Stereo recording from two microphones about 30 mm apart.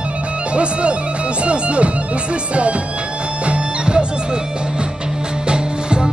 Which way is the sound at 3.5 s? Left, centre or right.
Right.